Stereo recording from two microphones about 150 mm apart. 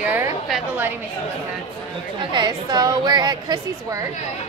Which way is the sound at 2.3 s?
30° right (ahead or behind).